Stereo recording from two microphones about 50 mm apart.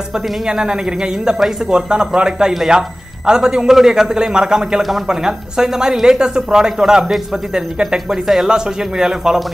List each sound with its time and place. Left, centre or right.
0.5 s speech: centre